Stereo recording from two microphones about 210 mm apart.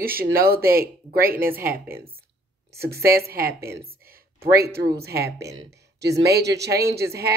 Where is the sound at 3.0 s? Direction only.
45° right (ahead or behind).